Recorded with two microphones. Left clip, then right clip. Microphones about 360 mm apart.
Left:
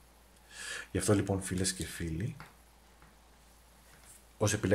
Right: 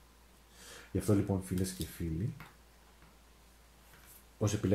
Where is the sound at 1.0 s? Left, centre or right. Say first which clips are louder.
Left 2 dB; left.